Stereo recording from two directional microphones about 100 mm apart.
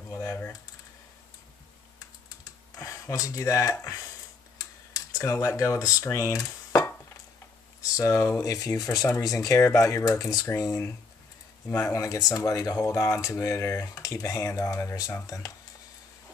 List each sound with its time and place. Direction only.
0.1 s typing: 25° left (ahead or behind)
2.8 s speech: 35° left (ahead or behind)
4.6 s computer keyboard: 35° left (ahead or behind)
6.0 s speech: 30° left (ahead or behind)